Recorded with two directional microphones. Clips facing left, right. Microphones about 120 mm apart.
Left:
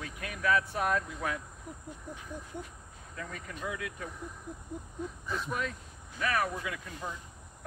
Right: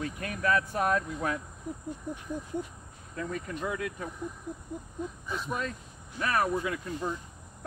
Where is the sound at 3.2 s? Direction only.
35° right (ahead or behind).